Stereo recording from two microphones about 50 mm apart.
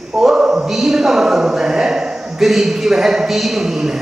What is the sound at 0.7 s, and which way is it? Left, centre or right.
Speech, centre.